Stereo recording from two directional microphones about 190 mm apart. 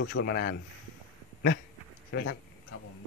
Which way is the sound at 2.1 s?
60° left (ahead or behind).